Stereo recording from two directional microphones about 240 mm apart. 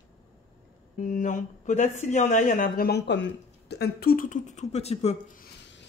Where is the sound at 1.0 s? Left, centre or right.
Left.